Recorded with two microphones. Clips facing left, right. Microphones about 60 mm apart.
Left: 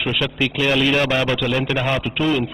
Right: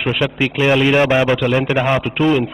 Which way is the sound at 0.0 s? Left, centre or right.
Right.